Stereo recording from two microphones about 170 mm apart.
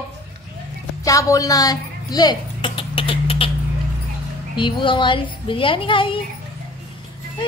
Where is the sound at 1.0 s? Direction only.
20° left (ahead or behind).